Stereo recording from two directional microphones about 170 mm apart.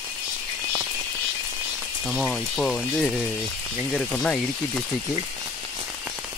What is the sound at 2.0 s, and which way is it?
Speech, centre (ahead or behind).